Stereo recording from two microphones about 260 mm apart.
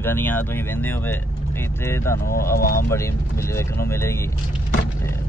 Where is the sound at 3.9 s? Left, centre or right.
Centre.